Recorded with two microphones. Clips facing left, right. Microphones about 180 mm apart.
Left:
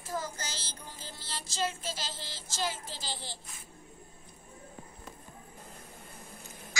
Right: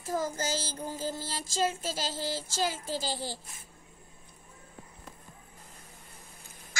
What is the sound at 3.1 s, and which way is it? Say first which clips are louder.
Speech: right 7 dB; 45° right (ahead or behind).